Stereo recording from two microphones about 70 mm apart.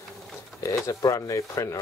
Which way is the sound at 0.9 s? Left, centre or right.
Left.